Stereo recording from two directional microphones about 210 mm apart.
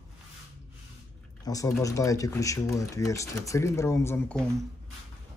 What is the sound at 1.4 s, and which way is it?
Speech, 15° left (ahead or behind).